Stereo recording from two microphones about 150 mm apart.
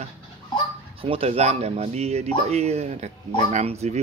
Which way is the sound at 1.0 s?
40° right (ahead or behind).